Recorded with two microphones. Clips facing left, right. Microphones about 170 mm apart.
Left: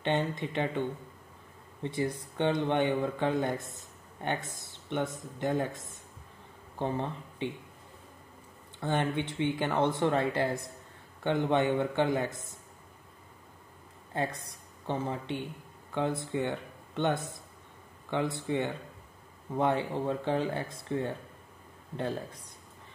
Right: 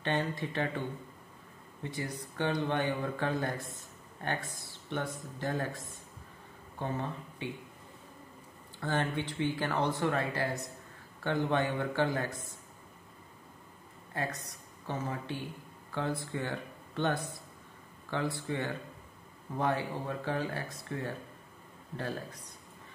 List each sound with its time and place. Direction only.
0.0 s speech: 20° left (ahead or behind)
8.7 s speech: 20° left (ahead or behind)
14.1 s speech: 25° left (ahead or behind)